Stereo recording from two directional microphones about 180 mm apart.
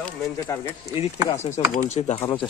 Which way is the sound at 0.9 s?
35° left (ahead or behind).